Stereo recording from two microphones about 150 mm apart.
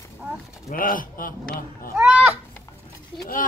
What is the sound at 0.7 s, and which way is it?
Speech, 65° left (ahead or behind).